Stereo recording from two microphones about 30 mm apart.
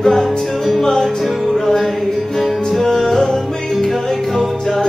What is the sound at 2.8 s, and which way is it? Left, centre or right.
Music, centre.